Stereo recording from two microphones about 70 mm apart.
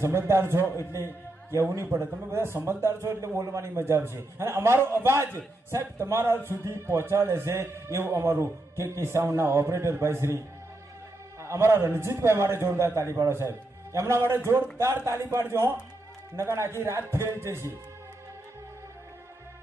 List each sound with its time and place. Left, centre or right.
0.0 s a man's voice: right
11.4 s a man's voice: right